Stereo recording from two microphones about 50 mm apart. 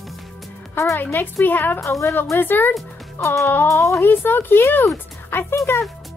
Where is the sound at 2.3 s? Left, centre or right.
Left.